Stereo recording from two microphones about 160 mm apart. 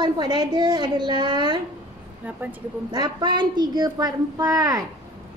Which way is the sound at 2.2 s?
10° right (ahead or behind).